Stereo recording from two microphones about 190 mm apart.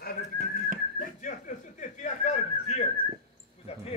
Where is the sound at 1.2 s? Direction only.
40° left (ahead or behind).